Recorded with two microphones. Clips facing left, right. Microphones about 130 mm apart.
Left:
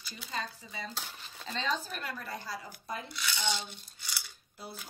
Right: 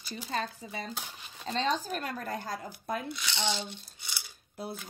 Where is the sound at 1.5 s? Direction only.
40° right (ahead or behind).